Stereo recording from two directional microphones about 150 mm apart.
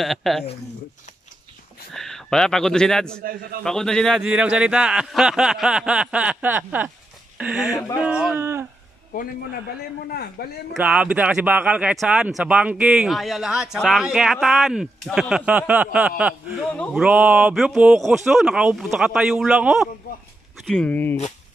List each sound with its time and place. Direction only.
0.0 s speech: centre (ahead or behind)
2.0 s speech: 5° left (ahead or behind)
4.3 s speech: 10° right (ahead or behind)
8.4 s speech: 20° right (ahead or behind)
10.4 s speech: 90° left
10.7 s speech: 10° right (ahead or behind)
20.6 s speech: 5° left (ahead or behind)